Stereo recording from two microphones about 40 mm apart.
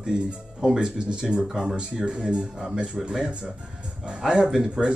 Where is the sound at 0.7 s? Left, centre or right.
Right.